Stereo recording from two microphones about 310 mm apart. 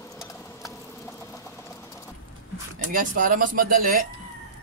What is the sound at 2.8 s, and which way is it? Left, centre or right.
Speech, right.